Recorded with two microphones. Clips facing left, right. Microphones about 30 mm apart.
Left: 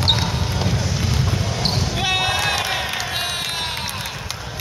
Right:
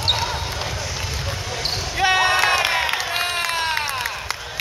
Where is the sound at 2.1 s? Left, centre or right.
Right.